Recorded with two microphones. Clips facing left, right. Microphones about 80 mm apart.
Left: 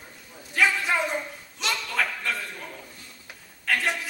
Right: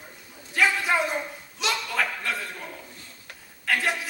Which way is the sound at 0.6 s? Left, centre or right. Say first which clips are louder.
Right 1 dB; centre.